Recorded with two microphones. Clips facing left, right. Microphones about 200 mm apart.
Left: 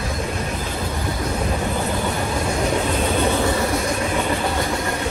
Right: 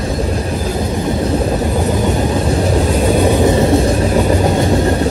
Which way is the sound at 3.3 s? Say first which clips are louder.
Right 8 dB; 20° right (ahead or behind).